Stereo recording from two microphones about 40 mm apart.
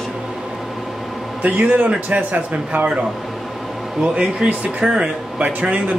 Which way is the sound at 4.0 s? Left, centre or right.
Right.